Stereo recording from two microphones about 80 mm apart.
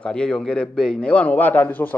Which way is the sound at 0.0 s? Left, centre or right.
Centre.